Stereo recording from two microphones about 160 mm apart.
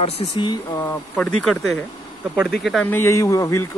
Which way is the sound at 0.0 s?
40° left (ahead or behind).